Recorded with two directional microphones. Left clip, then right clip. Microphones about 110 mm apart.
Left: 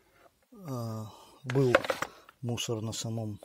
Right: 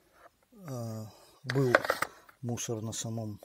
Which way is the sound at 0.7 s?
5° left (ahead or behind).